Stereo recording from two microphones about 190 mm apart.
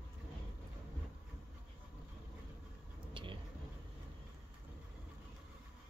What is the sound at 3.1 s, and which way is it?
Vehicle, 25° right (ahead or behind).